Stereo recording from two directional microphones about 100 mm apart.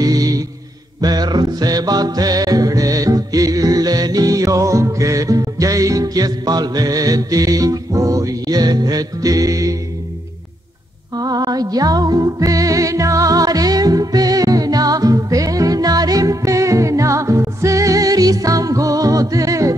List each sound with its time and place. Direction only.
0.0 s music: 40° right (ahead or behind)
11.1 s music: 40° right (ahead or behind)